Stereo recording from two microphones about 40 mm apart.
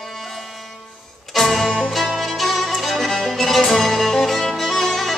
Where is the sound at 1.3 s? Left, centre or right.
Centre.